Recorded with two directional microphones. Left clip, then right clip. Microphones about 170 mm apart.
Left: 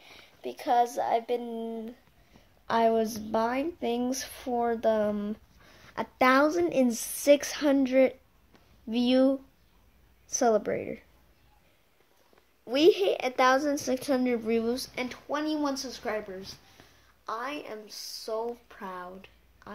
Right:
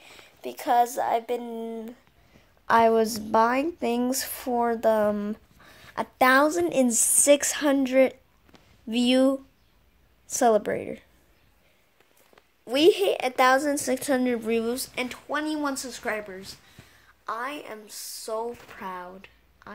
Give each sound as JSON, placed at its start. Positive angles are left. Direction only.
{"t": 0.0, "sound": "a woman's voice", "side_deg": -15}
{"t": 2.6, "sound": "a woman's voice", "side_deg": -25}
{"t": 12.6, "sound": "speech", "side_deg": -10}
{"t": 18.8, "sound": "speech", "side_deg": -20}
{"t": 19.6, "sound": "quack", "side_deg": -10}